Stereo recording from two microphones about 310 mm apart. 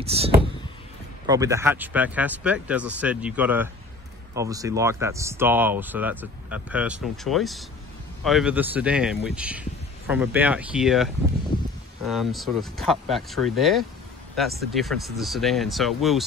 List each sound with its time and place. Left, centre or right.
0.0 s speech: centre